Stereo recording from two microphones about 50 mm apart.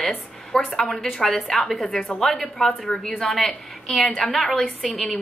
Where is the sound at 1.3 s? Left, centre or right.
Centre.